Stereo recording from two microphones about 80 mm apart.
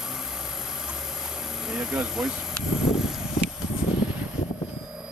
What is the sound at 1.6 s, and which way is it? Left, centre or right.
Speech, centre.